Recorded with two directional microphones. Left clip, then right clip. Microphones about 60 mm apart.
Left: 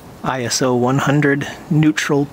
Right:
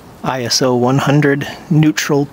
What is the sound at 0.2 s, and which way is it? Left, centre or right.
Speech, right.